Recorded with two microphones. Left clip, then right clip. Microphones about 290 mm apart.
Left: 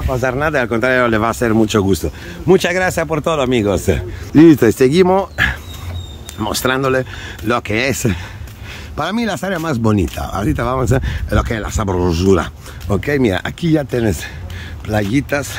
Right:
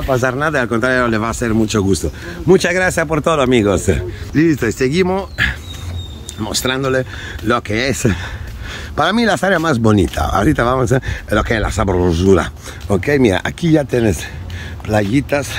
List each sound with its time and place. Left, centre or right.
0.1 s speech: centre
4.4 s speech: left; by 15.5 s centre